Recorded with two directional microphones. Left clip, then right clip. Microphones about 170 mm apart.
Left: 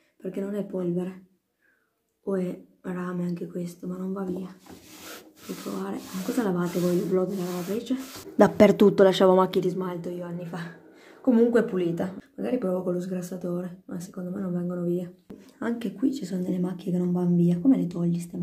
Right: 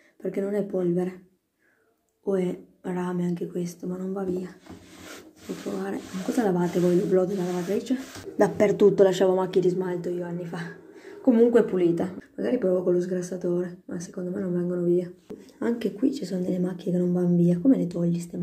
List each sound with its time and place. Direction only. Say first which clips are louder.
0.2 s speech: right 5 dB; 5° right (ahead or behind)
2.8 s speech: right 3 dB; 5° right (ahead or behind)
5.8 s speech: right 2 dB; centre (ahead or behind)
8.4 s speech: left 2 dB; 35° left (ahead or behind); by 18.3 s 10° left (ahead or behind)